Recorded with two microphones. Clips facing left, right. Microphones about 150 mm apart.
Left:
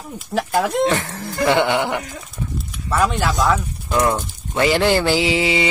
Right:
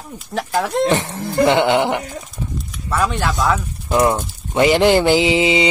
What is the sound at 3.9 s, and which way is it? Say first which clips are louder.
Speech: right 3 dB; 25° right (ahead or behind).